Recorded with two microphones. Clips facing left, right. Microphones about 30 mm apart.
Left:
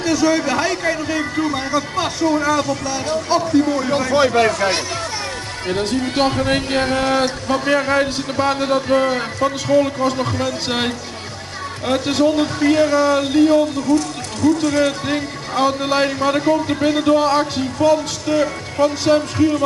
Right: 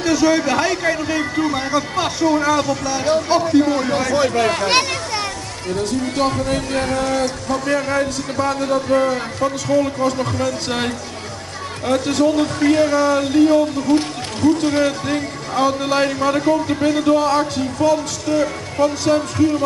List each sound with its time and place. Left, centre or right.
0.0 s a man's voice: centre
4.1 s a man's voice: left
4.6 s a sound: right
5.7 s a man's voice: left; by 12.4 s centre
12.5 s a man's voice: centre
13.8 s speech: right
14.9 s a man's voice: centre